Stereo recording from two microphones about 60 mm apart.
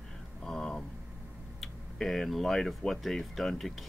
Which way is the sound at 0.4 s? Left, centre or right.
Centre.